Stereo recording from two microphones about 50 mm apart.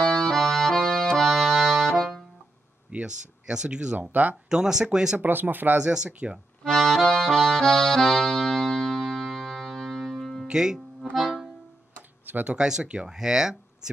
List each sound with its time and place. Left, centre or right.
0.0 s accordion: centre
2.9 s a sound: right
3.4 s speech: centre
4.1 s speech: right
4.5 s speech: centre
5.2 s speech: right
5.8 s speech: centre
6.6 s accordion: centre
10.1 s music: centre
10.4 s speech: centre
11.1 s music: centre
12.4 s speech: centre
13.1 s speech: centre